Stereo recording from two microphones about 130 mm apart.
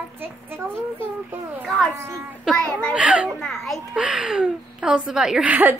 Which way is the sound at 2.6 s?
10° left (ahead or behind).